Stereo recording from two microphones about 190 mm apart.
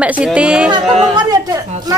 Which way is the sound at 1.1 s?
20° right (ahead or behind).